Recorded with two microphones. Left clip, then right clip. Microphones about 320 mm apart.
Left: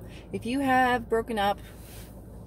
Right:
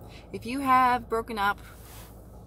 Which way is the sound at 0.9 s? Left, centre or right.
Right.